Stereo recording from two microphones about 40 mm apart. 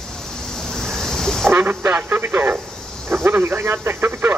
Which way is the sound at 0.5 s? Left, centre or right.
Centre.